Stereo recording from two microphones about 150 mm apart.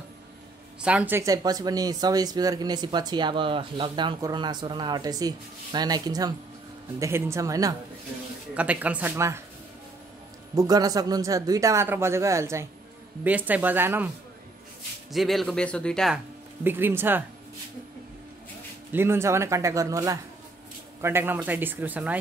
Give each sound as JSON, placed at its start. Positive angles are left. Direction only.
{"t": 0.7, "sound": "speech", "side_deg": -5}
{"t": 1.2, "sound": "speech", "side_deg": -25}
{"t": 8.5, "sound": "speech", "side_deg": -10}
{"t": 10.5, "sound": "speech", "side_deg": -25}
{"t": 15.1, "sound": "speech", "side_deg": 0}
{"t": 16.6, "sound": "speech", "side_deg": -15}
{"t": 18.9, "sound": "speech", "side_deg": -15}